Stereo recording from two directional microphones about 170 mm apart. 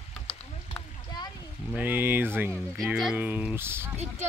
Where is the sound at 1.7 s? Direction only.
10° right (ahead or behind).